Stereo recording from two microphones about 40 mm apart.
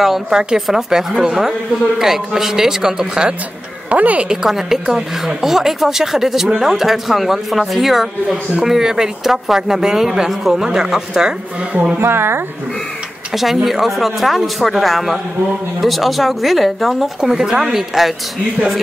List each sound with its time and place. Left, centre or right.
0.0 s speech: centre
3.9 s speech: right
4.3 s speech: centre
12.0 s a woman's voice: right
13.3 s a man's voice: centre
17.2 s speech: centre